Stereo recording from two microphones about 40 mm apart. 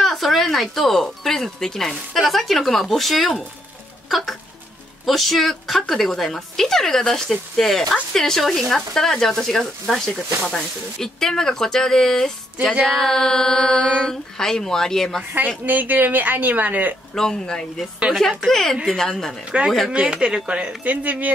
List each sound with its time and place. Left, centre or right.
0.0 s speech: centre
2.1 s speech: centre
5.0 s a woman's voice: centre
15.3 s speech: right
17.1 s a woman's voice: centre
19.5 s speech: right
20.5 s speech: right